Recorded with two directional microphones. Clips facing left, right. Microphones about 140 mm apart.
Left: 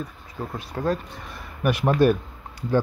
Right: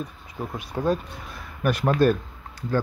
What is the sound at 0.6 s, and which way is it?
Speech, 15° right (ahead or behind).